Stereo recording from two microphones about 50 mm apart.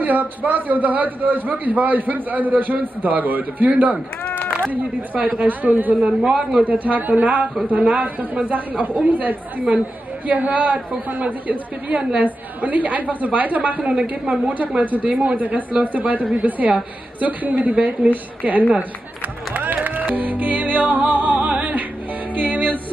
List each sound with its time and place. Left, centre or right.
0.0 s a man's voice: right
5.1 s a man's voice: right
5.9 s a woman's voice: centre
6.6 s a man's voice: right
19.5 s music: right